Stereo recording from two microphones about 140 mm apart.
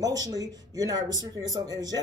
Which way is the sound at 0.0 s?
25° right (ahead or behind).